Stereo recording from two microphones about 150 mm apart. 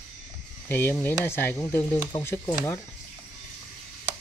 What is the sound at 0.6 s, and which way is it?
Speech, 15° left (ahead or behind).